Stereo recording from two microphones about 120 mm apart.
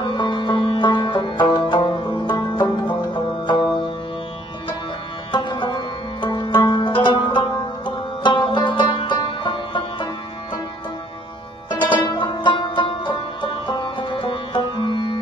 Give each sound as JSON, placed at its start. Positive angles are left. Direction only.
{"t": 0.0, "sound": "music", "side_deg": 40}
{"t": 5.3, "sound": "music", "side_deg": 40}
{"t": 12.1, "sound": "music", "side_deg": 40}